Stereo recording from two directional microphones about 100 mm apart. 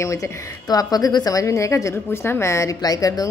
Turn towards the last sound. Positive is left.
turn(degrees=35)  # may be behind; listen again after turning